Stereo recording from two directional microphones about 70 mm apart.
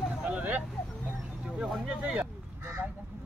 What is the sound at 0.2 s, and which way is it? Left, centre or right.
Vehicle, right.